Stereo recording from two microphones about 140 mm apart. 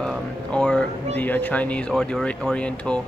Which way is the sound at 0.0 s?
5° left (ahead or behind).